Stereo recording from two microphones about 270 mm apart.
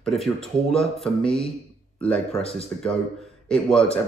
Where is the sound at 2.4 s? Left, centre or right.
Left.